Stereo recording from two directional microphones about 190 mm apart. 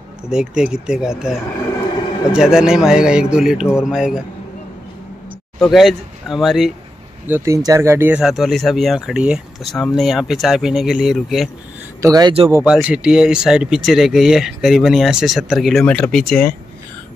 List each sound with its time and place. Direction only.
0.3 s speech: 5° right (ahead or behind)
2.3 s speech: 5° right (ahead or behind)
5.6 s speech: centre (ahead or behind)
7.2 s speech: 15° right (ahead or behind)
12.0 s a man's voice: 20° right (ahead or behind)
12.5 s speech: 5° right (ahead or behind)